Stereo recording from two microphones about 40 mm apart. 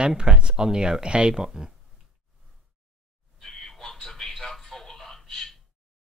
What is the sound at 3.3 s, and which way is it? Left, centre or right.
Television, centre.